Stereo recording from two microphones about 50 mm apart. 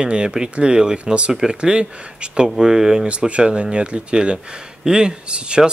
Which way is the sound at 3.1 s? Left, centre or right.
Right.